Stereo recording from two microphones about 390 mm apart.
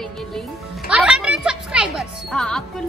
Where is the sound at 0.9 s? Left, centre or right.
Centre.